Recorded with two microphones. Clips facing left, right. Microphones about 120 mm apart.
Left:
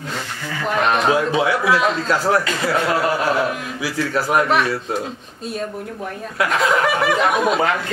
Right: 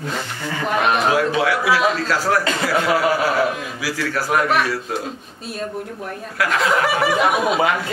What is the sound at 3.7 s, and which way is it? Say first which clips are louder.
Speech: left 2 dB; 25° left (ahead or behind).